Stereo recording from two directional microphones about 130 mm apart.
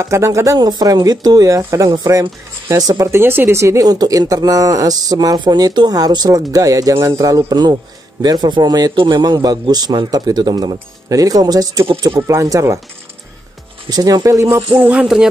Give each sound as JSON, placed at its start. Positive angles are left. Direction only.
{"t": 0.0, "sound": "a man's voice", "side_deg": -20}
{"t": 11.9, "sound": "speech", "side_deg": -40}
{"t": 12.2, "sound": "speech", "side_deg": -25}
{"t": 13.8, "sound": "speech", "side_deg": -30}
{"t": 14.8, "sound": "music", "side_deg": -10}